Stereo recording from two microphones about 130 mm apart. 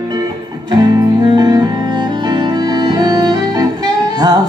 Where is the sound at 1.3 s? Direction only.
30° right (ahead or behind).